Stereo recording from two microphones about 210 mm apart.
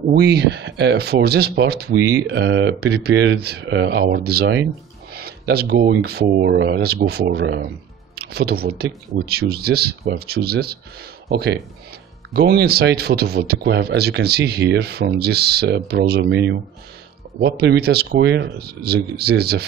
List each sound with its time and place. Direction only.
0.1 s speech: 50° right (ahead or behind)